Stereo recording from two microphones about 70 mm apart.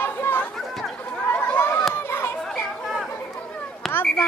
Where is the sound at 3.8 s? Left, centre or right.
Centre.